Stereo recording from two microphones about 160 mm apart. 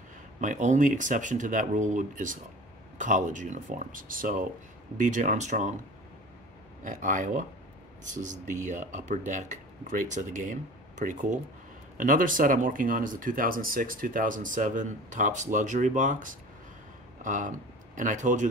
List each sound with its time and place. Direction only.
0.4 s speech: 50° right (ahead or behind)
6.8 s speech: 55° right (ahead or behind)